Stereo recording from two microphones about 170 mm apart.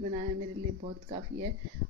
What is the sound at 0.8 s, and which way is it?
Speech, 40° right (ahead or behind).